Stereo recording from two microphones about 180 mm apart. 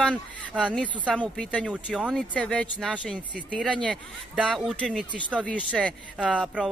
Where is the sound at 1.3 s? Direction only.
5° left (ahead or behind).